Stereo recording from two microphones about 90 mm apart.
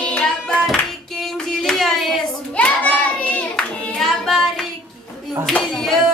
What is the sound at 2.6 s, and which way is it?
Hands, 15° left (ahead or behind).